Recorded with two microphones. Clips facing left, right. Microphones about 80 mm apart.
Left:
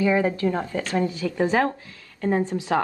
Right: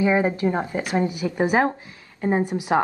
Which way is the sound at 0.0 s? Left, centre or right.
Right.